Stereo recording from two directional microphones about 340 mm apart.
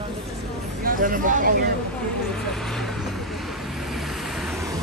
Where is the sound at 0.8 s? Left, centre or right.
Right.